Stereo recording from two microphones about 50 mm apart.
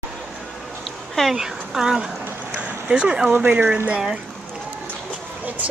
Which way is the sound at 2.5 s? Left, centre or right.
Right.